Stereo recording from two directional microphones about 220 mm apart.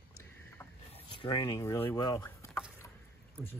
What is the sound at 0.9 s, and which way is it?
Speech, 20° left (ahead or behind).